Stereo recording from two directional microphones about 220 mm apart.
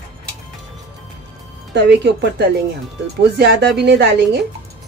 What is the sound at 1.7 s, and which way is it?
Speech, 50° right (ahead or behind).